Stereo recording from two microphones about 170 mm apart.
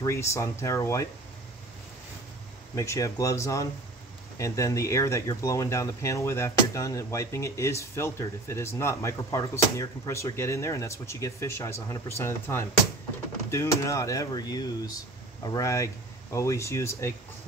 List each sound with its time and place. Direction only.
0.0 s speech: 15° left (ahead or behind)
2.7 s speech: 15° left (ahead or behind)
13.8 s speech: 20° left (ahead or behind)